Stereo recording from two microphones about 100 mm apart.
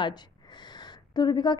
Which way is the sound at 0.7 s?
45° left (ahead or behind).